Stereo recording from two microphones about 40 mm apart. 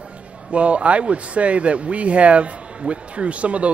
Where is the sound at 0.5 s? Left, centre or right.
Right.